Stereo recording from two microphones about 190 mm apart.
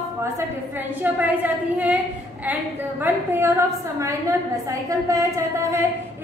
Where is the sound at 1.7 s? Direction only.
10° right (ahead or behind).